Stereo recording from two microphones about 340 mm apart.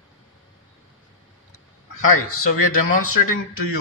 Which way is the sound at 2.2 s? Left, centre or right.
Left.